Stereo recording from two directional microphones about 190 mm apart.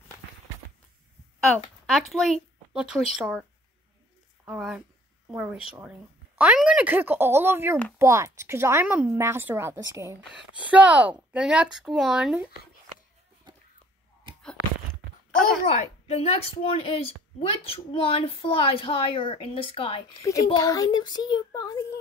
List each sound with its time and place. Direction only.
1.5 s speech: centre (ahead or behind)
4.5 s a woman's voice: 5° right (ahead or behind)
13.5 s a sound: 25° right (ahead or behind)
16.1 s a woman's voice: 30° left (ahead or behind)